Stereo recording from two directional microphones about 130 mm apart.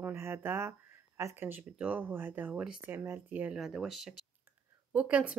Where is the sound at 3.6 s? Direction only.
Centre (ahead or behind).